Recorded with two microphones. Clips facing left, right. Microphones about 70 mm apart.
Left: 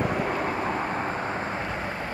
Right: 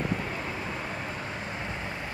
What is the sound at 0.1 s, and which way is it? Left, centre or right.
Vehicle, left.